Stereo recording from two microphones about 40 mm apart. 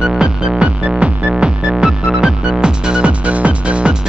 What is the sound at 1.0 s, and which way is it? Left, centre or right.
Music, right.